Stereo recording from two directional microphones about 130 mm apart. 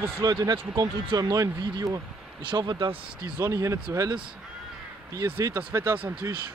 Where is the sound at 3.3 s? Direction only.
25° right (ahead or behind).